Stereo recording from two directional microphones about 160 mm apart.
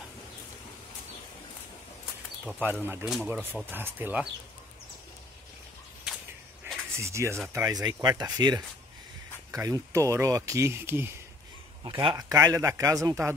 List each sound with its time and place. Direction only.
2.4 s speech: 10° right (ahead or behind)
3.1 s speech: 5° right (ahead or behind)
7.0 s speech: 15° right (ahead or behind)
11.8 s speech: 30° right (ahead or behind)